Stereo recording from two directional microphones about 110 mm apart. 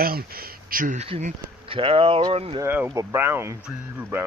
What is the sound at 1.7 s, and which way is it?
Speech, 60° right (ahead or behind).